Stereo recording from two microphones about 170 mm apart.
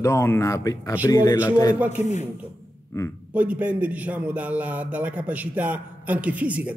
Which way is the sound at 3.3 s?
10° right (ahead or behind).